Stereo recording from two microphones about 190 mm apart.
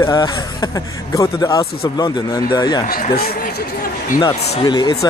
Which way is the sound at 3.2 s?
55° left (ahead or behind).